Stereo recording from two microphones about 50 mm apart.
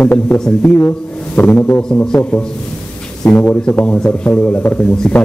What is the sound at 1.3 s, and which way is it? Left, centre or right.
Speech, left.